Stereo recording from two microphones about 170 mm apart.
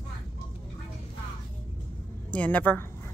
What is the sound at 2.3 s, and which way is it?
Speech, 10° left (ahead or behind).